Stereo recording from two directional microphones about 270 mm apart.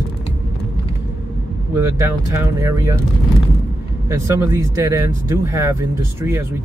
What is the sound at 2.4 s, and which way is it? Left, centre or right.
Speech, centre.